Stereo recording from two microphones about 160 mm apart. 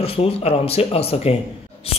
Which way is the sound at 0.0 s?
40° left (ahead or behind).